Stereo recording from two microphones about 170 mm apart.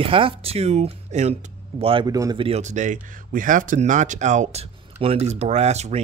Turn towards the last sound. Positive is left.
turn(degrees=-40)  # may be behind; listen again after turning